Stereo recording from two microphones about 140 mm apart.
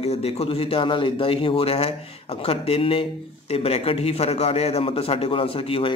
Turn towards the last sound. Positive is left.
turn(degrees=40)  # may be behind; listen again after turning